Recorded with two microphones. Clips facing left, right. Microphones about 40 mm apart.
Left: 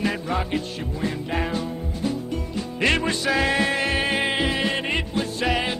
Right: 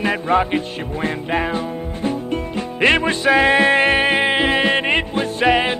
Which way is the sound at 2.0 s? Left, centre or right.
Right.